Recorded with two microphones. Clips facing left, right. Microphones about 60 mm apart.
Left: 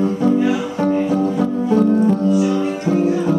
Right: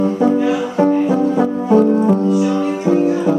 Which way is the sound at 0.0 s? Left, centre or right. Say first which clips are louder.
Right 2 dB; centre.